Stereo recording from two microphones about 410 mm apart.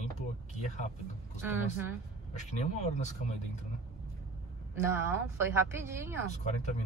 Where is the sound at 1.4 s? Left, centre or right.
Centre.